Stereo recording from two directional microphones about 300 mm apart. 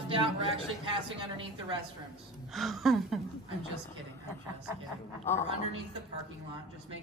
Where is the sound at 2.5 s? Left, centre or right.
Centre.